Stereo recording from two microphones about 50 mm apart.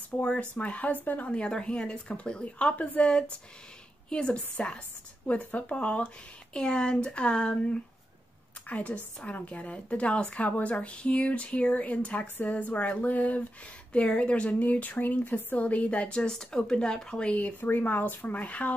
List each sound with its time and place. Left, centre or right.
0.2 s a woman's voice: left
1.3 s a woman's voice: centre
17.6 s speech: left